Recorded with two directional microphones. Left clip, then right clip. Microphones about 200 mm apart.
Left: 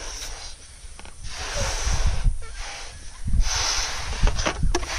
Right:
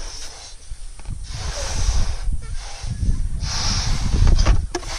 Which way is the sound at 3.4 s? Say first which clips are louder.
Even; 10° left (ahead or behind).